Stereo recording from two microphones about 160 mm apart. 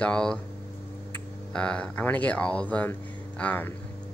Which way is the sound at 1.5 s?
5° left (ahead or behind).